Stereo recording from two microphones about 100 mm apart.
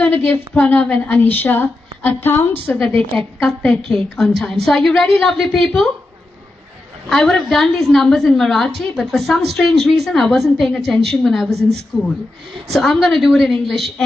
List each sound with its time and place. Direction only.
0.0 s a woman's voice: 20° left (ahead or behind)
3.2 s a woman's voice: 5° left (ahead or behind)
7.1 s a woman's voice: 5° left (ahead or behind)